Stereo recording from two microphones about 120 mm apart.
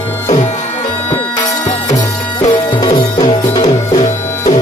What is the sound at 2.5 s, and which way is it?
Music, 40° left (ahead or behind).